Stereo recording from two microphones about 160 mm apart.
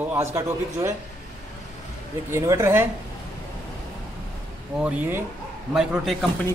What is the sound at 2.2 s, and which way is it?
Speech, 15° right (ahead or behind).